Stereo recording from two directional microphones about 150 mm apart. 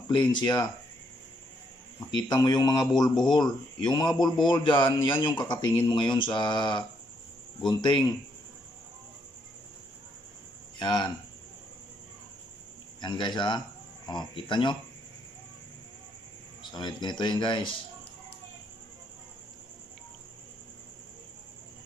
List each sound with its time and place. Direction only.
0.1 s speech: 30° left (ahead or behind)
2.0 s speech: 30° left (ahead or behind)
10.8 s speech: 30° left (ahead or behind)
13.0 s speech: 30° left (ahead or behind)
16.7 s speech: 30° left (ahead or behind)